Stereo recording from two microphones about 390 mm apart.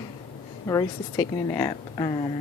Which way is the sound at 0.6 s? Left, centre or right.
Centre.